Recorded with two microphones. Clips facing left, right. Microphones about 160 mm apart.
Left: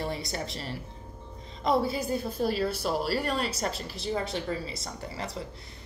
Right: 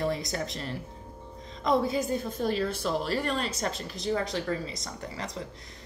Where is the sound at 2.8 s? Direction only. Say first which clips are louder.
Even; 10° left (ahead or behind).